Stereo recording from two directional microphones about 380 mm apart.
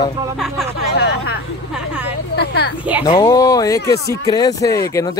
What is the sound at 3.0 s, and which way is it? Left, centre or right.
Speech, centre.